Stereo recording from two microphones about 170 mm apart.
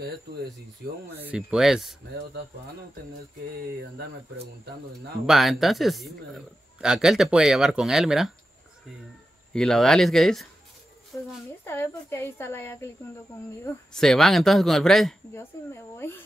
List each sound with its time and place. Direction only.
0.8 s speech: 70° right (ahead or behind)
1.2 s a man's voice: 5° right (ahead or behind)
5.2 s a man's voice: centre (ahead or behind)
9.5 s a man's voice: 5° left (ahead or behind)
11.6 s a woman's voice: 15° left (ahead or behind)
13.9 s a man's voice: centre (ahead or behind)
15.3 s a woman's voice: 15° left (ahead or behind)